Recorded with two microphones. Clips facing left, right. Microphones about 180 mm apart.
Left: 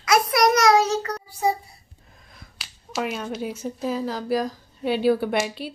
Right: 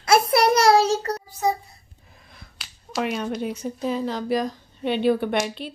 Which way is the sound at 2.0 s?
Centre (ahead or behind).